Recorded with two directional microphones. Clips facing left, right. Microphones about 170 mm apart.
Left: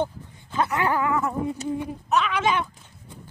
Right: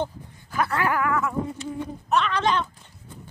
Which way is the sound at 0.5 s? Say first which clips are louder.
Left 1 dB; 20° left (ahead or behind).